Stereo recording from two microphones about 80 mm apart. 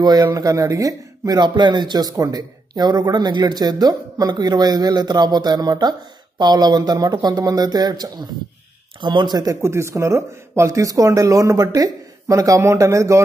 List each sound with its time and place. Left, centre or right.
0.0 s speech: right
9.0 s speech: right
9.6 s speech: right